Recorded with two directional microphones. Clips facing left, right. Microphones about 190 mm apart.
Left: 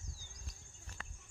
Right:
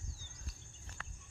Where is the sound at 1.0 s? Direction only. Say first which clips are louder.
Even; 25° left (ahead or behind).